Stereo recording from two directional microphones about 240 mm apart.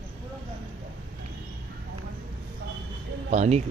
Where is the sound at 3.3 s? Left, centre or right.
Right.